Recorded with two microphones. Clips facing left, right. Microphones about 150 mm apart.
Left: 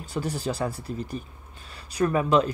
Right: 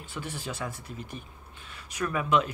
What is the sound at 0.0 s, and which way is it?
Speech, 40° left (ahead or behind).